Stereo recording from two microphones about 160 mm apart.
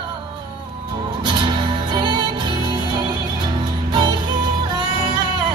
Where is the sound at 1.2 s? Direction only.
30° right (ahead or behind).